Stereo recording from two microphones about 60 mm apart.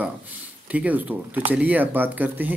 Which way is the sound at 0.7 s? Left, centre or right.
Right.